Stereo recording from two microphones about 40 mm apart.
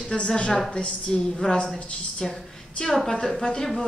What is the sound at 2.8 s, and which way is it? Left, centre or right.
Speech, centre.